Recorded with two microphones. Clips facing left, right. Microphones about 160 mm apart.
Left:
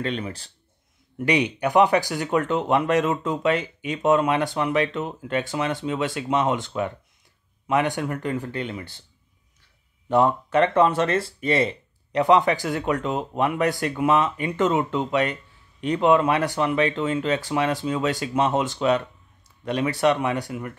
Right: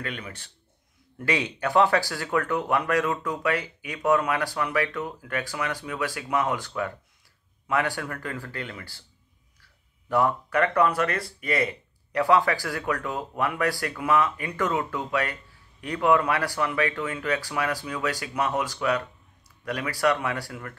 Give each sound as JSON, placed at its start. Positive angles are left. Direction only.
{"t": 0.0, "sound": "speech", "side_deg": 30}
{"t": 1.1, "sound": "speech", "side_deg": 20}